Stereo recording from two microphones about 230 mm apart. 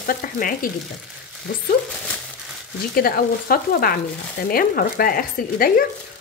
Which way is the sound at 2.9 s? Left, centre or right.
Left.